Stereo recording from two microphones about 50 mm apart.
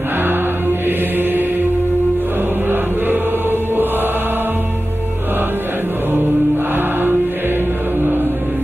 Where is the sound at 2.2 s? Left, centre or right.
Right.